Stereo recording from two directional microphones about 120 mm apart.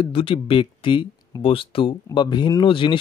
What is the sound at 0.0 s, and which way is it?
Speech, 50° left (ahead or behind).